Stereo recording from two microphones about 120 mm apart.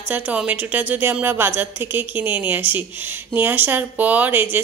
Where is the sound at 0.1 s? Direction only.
10° right (ahead or behind).